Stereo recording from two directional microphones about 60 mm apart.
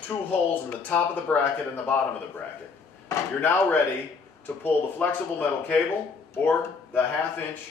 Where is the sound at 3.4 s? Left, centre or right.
Left.